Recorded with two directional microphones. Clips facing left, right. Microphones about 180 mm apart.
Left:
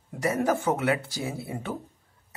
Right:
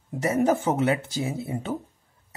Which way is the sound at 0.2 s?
25° right (ahead or behind).